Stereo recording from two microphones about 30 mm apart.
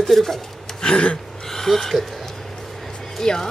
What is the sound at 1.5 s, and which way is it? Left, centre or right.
Speech, centre.